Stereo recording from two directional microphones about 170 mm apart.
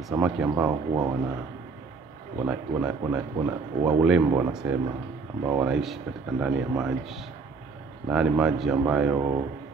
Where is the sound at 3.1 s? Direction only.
5° right (ahead or behind).